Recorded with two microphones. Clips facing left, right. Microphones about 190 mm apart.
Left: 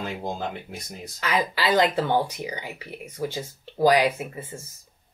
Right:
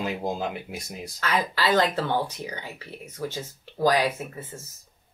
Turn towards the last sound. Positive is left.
turn(degrees=10)  # may be behind; listen again after turning